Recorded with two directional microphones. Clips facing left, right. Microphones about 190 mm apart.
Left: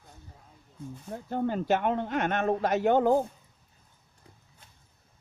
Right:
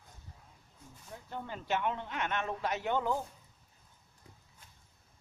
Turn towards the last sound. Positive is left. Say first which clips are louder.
# left 10 dB
turn(degrees=50)  # may be behind; listen again after turning